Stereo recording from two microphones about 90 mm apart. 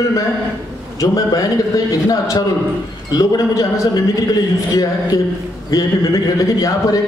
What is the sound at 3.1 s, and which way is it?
Speech, 45° left (ahead or behind).